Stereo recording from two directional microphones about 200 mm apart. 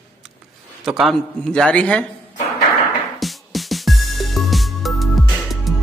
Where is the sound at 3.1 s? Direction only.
Centre (ahead or behind).